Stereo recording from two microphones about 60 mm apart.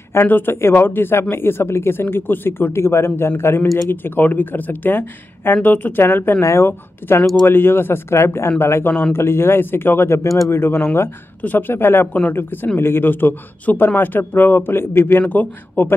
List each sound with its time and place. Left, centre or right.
0.1 s a man's voice: left
6.4 s a man's voice: left
11.4 s a man's voice: left